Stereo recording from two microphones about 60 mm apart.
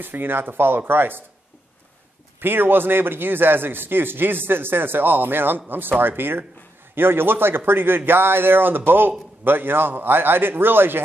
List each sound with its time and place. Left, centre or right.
0.0 s a man's voice: right
2.4 s a man's voice: right